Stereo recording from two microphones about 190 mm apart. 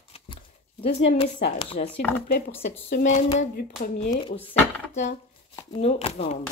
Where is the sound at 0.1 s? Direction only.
30° left (ahead or behind).